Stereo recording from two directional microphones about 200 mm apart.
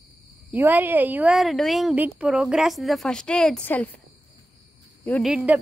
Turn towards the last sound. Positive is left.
turn(degrees=-5)  # may be behind; listen again after turning